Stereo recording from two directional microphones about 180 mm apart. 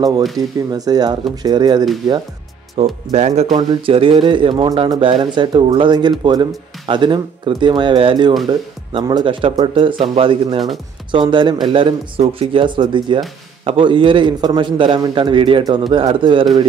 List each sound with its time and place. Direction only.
0.7 s speech: 20° right (ahead or behind)
2.8 s speech: 35° right (ahead or behind)